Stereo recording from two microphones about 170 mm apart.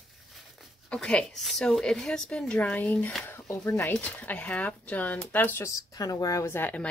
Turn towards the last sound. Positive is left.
turn(degrees=10)  # may be behind; listen again after turning